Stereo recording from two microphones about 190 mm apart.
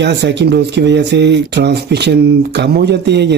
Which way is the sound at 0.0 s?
65° right (ahead or behind).